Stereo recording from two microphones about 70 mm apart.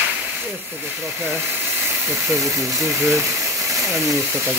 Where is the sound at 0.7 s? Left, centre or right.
Right.